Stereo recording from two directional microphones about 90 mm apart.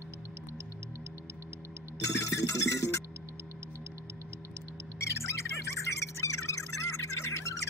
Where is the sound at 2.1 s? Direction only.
35° left (ahead or behind).